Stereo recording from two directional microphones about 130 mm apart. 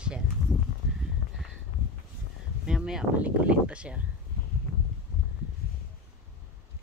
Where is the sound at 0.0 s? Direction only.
10° right (ahead or behind).